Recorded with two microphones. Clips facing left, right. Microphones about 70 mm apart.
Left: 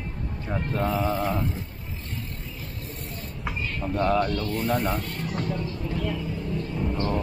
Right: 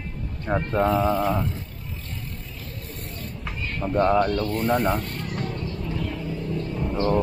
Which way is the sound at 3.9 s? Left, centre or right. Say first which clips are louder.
Right 4 dB; right.